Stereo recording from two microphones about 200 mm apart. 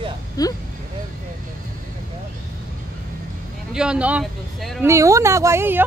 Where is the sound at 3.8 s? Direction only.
5° right (ahead or behind).